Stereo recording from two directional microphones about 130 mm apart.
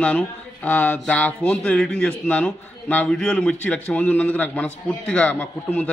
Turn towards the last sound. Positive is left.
turn(degrees=15)  # may be behind; listen again after turning